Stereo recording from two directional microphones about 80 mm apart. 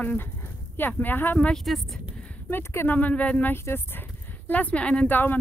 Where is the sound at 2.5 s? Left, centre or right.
Left.